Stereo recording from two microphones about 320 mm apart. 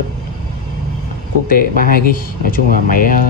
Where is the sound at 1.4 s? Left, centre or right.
Left.